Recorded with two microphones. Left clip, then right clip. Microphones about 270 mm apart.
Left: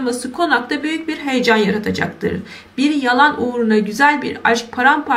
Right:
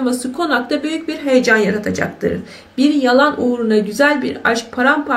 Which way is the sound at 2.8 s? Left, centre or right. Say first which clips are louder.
Right 1 dB; centre.